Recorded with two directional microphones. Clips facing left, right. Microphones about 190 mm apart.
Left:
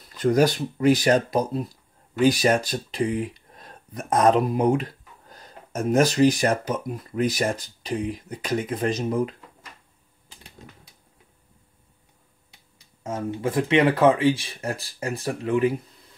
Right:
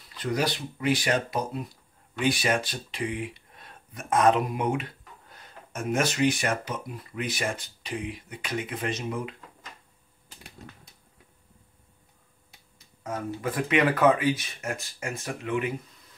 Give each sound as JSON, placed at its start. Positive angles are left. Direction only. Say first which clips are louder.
{"t": 0.1, "sound": "speech", "louder": "left 9 dB", "side_deg": 45}
{"t": 13.0, "sound": "speech", "louder": "left 4 dB", "side_deg": 25}